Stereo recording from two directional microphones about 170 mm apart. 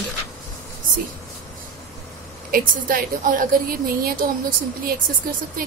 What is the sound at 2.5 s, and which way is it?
A woman's voice, 55° right (ahead or behind).